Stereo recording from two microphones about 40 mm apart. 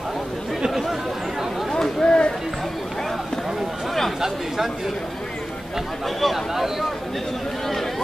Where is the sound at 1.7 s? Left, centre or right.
Centre.